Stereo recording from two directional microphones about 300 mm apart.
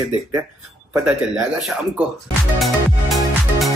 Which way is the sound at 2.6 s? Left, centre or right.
Centre.